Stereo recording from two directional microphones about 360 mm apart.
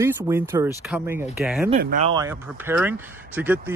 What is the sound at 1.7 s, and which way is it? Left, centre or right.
Speech, right.